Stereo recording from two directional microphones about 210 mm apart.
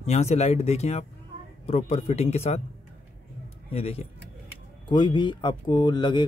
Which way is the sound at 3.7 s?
30° left (ahead or behind).